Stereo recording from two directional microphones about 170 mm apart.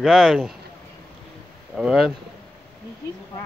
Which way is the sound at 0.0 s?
Centre (ahead or behind).